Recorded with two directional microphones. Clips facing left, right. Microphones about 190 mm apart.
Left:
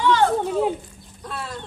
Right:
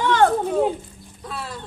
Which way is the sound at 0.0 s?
50° right (ahead or behind).